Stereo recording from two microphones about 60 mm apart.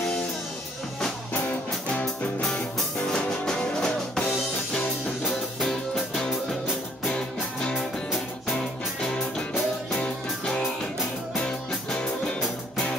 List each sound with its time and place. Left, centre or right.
1.3 s music: left
3.1 s music: centre
7.7 s music: centre
8.5 s music: centre
9.5 s music: centre
9.9 s music: centre